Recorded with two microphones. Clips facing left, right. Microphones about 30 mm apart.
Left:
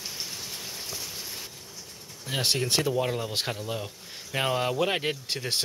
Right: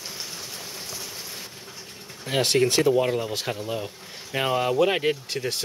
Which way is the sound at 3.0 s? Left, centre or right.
Centre.